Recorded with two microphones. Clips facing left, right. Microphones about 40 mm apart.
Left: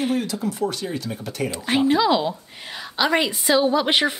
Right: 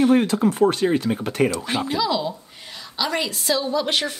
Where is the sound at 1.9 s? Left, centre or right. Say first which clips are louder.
Left 5 dB; left.